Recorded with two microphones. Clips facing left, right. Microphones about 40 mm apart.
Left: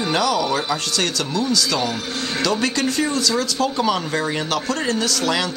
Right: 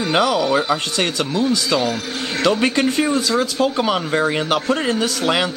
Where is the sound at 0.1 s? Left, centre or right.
Right.